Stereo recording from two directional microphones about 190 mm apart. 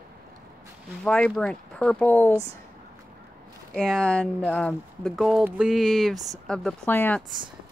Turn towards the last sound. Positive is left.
turn(degrees=10)  # may be behind; listen again after turning